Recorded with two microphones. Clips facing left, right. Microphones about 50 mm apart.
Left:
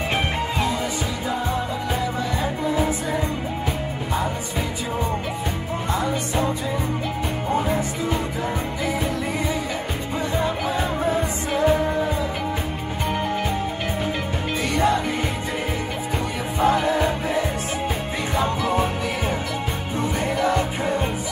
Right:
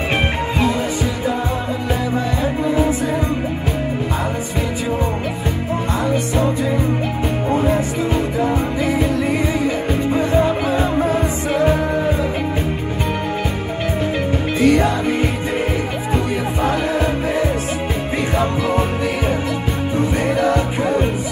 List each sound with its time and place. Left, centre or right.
6.0 s music: right
10.1 s music: right
14.6 s music: right
16.6 s music: right